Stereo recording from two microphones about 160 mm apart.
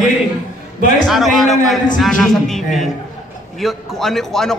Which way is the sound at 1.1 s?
Centre (ahead or behind).